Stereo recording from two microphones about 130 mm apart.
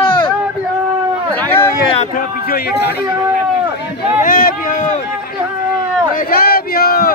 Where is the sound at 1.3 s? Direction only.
15° left (ahead or behind).